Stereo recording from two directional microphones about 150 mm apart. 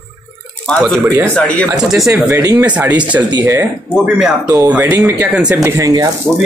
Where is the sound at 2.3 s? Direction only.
20° right (ahead or behind).